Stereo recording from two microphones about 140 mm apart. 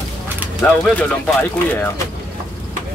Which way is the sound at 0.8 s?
10° left (ahead or behind).